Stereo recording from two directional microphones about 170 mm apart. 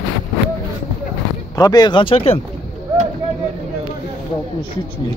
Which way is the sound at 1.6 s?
25° left (ahead or behind).